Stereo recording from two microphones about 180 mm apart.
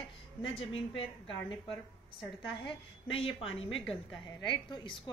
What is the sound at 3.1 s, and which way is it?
A woman's voice, 30° left (ahead or behind).